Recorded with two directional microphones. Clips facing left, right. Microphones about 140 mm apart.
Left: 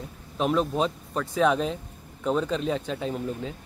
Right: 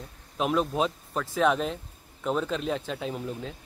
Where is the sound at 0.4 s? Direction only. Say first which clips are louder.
Left 2 dB; centre (ahead or behind).